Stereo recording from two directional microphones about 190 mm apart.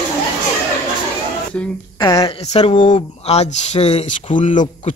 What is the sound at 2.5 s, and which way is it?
Speech, 35° left (ahead or behind).